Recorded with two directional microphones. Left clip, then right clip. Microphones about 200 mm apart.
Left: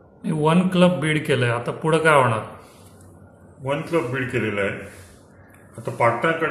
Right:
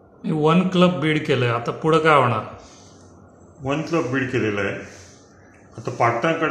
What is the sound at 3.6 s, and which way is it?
A man's voice, 20° right (ahead or behind).